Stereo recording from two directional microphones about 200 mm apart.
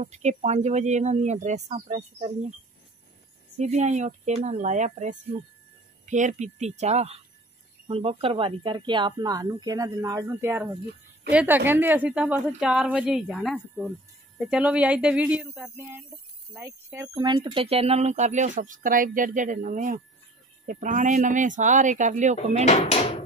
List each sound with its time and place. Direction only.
0.0 s speech: 35° right (ahead or behind)
3.5 s a woman's voice: 35° right (ahead or behind)
22.7 s speech: 30° left (ahead or behind)